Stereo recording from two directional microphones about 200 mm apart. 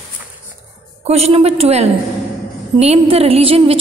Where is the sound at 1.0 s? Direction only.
30° right (ahead or behind).